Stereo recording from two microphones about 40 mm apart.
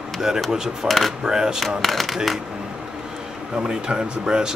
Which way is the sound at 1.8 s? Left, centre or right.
Centre.